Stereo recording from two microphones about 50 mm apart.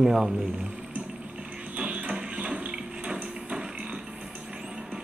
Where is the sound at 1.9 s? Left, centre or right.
Right.